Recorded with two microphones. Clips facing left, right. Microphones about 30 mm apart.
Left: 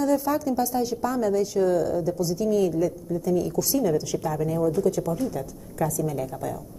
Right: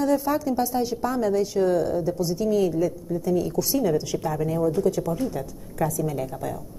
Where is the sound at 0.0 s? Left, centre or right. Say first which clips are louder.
Right 1 dB; right.